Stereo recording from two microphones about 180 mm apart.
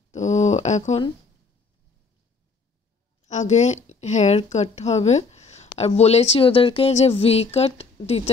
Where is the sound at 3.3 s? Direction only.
40° left (ahead or behind).